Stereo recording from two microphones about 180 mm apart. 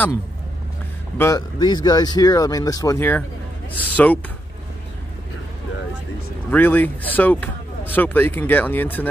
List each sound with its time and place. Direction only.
1.1 s speech: 15° left (ahead or behind)
6.5 s speech: 10° left (ahead or behind)